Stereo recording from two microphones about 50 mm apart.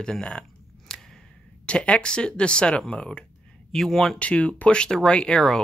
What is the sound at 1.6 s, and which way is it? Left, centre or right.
Speech, left.